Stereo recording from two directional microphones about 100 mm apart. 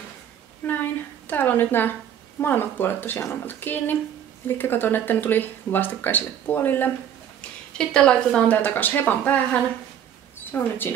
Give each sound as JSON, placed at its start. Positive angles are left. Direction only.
{"t": 0.6, "sound": "a sound", "side_deg": 20}
{"t": 1.2, "sound": "speech", "side_deg": 20}
{"t": 7.7, "sound": "a woman's voice", "side_deg": 10}